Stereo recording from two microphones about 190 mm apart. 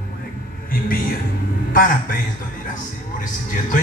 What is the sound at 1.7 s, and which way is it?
Music, 50° left (ahead or behind).